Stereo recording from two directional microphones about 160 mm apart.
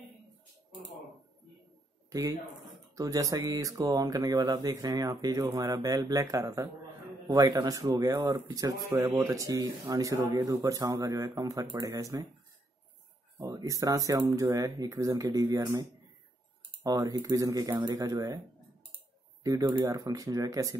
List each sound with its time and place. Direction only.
2.0 s a sound: 20° right (ahead or behind)
3.0 s speech: 20° right (ahead or behind)
13.4 s speech: 20° right (ahead or behind)
19.4 s speech: 20° right (ahead or behind)